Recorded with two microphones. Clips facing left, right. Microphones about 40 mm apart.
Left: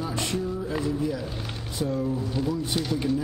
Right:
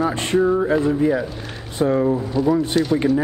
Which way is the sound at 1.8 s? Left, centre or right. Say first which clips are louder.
Right 10 dB; right.